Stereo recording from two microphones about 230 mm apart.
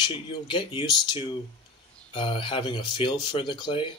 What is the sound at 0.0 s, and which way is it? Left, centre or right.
Speech, left.